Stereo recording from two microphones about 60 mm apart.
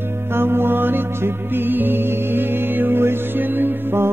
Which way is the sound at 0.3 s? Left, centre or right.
Right.